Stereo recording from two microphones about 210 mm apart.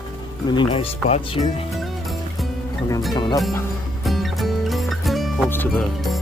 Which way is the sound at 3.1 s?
20° left (ahead or behind).